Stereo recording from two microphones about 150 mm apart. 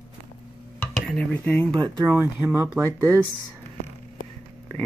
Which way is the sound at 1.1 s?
5° left (ahead or behind).